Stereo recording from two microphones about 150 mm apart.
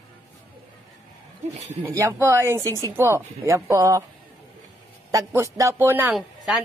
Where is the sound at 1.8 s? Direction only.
20° right (ahead or behind).